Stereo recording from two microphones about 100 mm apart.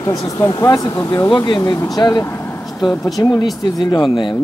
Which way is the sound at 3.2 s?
40° left (ahead or behind).